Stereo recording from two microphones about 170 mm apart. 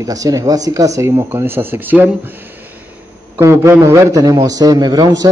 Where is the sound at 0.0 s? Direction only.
20° right (ahead or behind).